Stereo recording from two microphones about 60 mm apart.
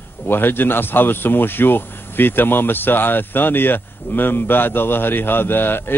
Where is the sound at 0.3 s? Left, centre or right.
Left.